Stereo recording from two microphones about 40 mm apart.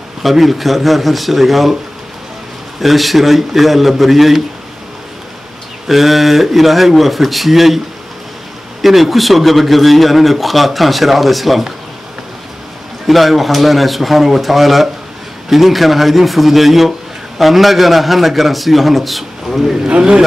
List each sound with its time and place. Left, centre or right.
0.2 s a man's voice: centre
2.8 s a man's voice: centre
5.9 s a man's voice: centre
8.8 s a man's voice: centre
13.0 s a man's voice: centre
19.9 s speech: right